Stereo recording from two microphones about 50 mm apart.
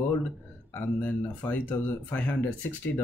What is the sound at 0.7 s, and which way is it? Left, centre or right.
Speech, left.